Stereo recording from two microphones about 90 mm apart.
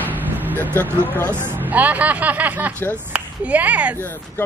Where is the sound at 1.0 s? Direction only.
20° left (ahead or behind).